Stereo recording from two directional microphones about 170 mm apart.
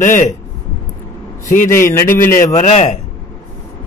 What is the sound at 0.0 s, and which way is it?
Speech, 50° left (ahead or behind).